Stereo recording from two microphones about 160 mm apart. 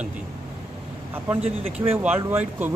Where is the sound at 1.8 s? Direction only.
15° right (ahead or behind).